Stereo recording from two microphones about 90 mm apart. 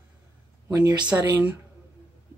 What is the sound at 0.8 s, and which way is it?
Speech, 50° right (ahead or behind).